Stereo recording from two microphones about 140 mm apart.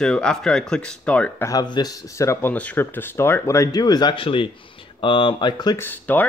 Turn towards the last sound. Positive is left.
turn(degrees=15)  # may be behind; listen again after turning